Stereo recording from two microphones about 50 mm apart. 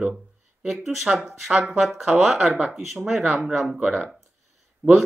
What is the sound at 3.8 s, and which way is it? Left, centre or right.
Speech, right.